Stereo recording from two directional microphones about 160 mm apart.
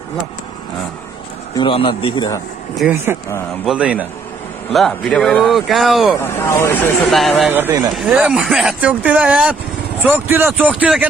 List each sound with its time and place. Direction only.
1.6 s a man's voice: 35° left (ahead or behind)
3.6 s speech: 5° right (ahead or behind)
6.2 s speech: 15° left (ahead or behind)
7.1 s speech: centre (ahead or behind)
7.4 s speech: 10° right (ahead or behind)